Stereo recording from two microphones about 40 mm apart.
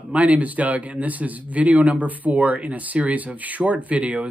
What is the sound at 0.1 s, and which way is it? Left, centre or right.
Speech, right.